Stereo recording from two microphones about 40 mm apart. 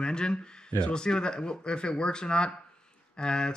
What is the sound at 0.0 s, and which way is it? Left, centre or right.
Speech, left.